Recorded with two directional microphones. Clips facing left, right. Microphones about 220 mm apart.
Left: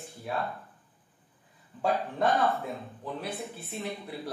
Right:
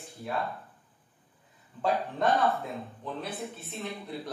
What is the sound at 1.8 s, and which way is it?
A man's voice, centre (ahead or behind).